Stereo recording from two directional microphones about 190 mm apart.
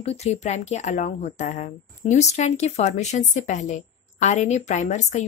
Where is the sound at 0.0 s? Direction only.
35° left (ahead or behind).